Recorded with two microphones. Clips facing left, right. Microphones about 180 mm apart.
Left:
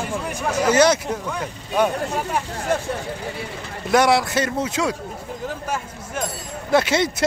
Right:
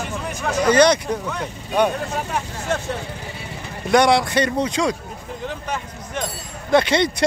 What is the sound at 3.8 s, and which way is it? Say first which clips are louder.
Speech: right 1 dB; 5° left (ahead or behind).